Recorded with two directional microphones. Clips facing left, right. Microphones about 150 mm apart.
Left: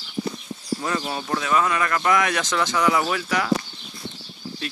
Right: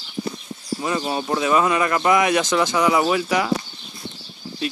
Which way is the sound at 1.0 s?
20° right (ahead or behind).